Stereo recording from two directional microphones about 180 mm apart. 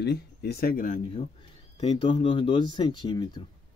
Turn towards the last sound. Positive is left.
turn(degrees=25)  # may be behind; listen again after turning